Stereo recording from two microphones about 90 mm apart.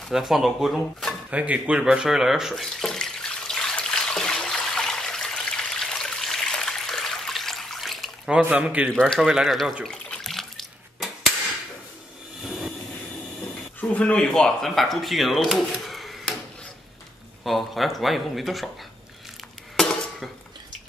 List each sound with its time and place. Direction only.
0.1 s speech: 5° right (ahead or behind)
1.3 s water tap: 15° right (ahead or behind); by 8.1 s centre (ahead or behind)
8.3 s speech: 15° right (ahead or behind)
9.0 s speech: 5° right (ahead or behind)
9.8 s water: 5° left (ahead or behind)
12.4 s train: centre (ahead or behind)
13.7 s speech: 15° left (ahead or behind)
17.4 s speech: centre (ahead or behind)